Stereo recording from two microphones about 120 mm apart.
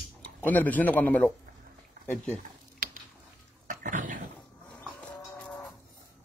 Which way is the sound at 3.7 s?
90° right.